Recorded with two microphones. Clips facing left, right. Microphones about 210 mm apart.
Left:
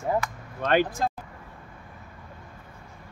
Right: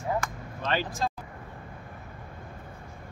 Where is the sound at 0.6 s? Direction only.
55° left (ahead or behind).